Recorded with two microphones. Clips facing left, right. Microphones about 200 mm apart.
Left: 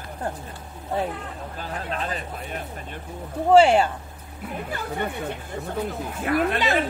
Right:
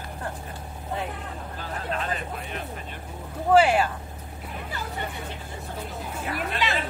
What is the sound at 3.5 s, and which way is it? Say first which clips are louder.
Speech: left 4 dB; 30° left (ahead or behind).